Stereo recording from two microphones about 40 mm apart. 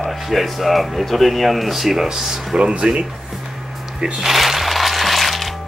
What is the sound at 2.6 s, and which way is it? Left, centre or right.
Speech, right.